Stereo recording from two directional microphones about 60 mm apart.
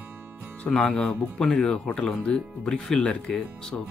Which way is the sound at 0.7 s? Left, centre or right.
Centre.